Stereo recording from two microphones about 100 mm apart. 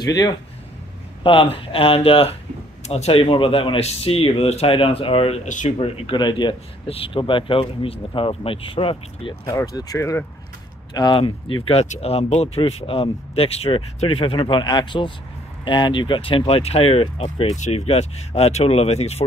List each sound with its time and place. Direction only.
0.0 s speech: 40° left (ahead or behind)
1.2 s speech: 65° left (ahead or behind); by 6.5 s 50° left (ahead or behind)
6.9 s speech: 65° left (ahead or behind)
9.9 s speech: 30° left (ahead or behind)
10.9 s speech: 45° left (ahead or behind)
11.1 s speech: 60° left (ahead or behind)
17.7 s speech: 90° left